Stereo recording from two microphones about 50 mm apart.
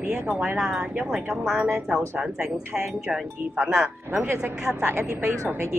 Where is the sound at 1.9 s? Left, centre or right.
Centre.